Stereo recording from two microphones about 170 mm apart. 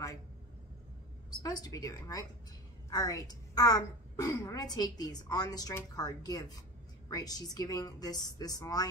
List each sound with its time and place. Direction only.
1.4 s a woman's voice: 20° left (ahead or behind)